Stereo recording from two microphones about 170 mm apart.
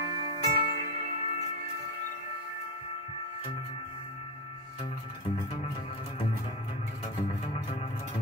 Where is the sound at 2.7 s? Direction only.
35° left (ahead or behind).